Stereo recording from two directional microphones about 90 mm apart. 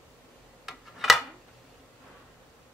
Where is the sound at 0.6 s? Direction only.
5° right (ahead or behind).